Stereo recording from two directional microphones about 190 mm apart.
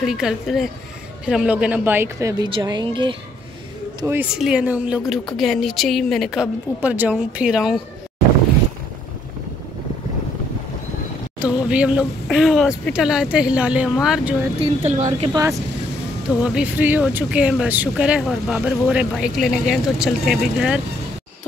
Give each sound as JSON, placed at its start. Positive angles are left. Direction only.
{"t": 0.0, "sound": "a woman's voice", "side_deg": -5}
{"t": 4.0, "sound": "a woman's voice", "side_deg": -10}
{"t": 11.3, "sound": "speech", "side_deg": -5}
{"t": 14.9, "sound": "a woman's voice", "side_deg": -40}
{"t": 16.3, "sound": "speech", "side_deg": -5}